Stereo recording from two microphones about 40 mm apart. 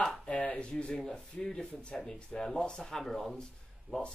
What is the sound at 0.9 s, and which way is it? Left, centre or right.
Speech, centre.